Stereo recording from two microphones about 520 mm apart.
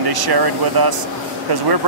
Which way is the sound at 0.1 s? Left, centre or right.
Right.